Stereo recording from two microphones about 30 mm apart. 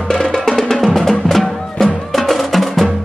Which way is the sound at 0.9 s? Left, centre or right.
Centre.